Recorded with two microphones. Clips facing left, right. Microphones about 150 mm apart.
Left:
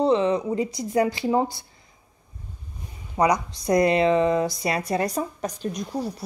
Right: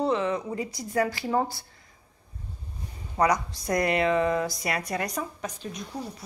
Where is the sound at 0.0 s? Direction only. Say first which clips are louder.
Left 6 dB; 25° left (ahead or behind).